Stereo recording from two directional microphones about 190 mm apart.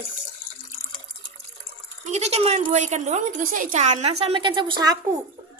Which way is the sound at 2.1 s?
35° right (ahead or behind).